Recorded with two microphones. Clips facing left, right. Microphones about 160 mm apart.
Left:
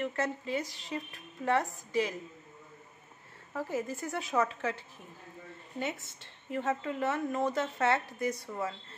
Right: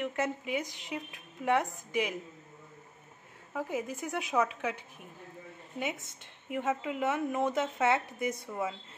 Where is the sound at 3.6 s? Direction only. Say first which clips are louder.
Even; 15° right (ahead or behind).